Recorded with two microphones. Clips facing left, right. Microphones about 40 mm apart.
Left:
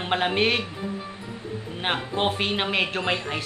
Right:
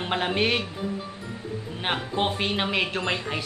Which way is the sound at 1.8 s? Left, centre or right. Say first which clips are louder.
Left 1 dB; centre.